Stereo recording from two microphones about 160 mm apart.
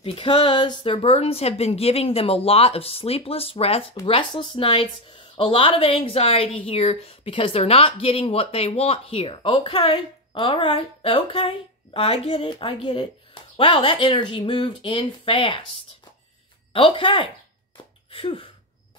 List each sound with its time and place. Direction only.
0.0 s speech: 35° left (ahead or behind)
16.7 s speech: 35° left (ahead or behind)
18.1 s a sound: 35° left (ahead or behind)